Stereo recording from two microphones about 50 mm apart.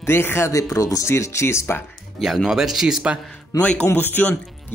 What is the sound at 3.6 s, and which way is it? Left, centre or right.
Speech, left.